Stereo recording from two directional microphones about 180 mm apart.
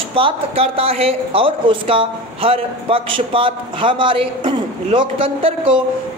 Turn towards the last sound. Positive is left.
turn(degrees=-30)  # may be behind; listen again after turning